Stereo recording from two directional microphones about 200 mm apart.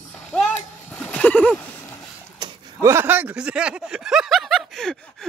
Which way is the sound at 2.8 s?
10° right (ahead or behind).